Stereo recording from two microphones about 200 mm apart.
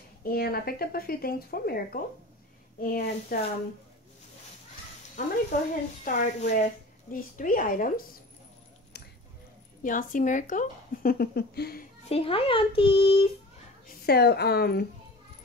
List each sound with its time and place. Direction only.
0.2 s speech: 50° left (ahead or behind)
5.2 s speech: 40° left (ahead or behind)
9.8 s speech: 40° left (ahead or behind)
12.1 s a child's voice: 30° left (ahead or behind)
13.8 s speech: 55° left (ahead or behind)